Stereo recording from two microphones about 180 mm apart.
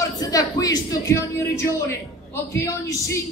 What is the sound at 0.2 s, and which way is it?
A woman's voice, 20° left (ahead or behind).